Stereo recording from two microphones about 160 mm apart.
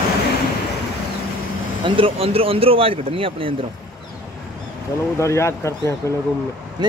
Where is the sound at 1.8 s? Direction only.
35° right (ahead or behind).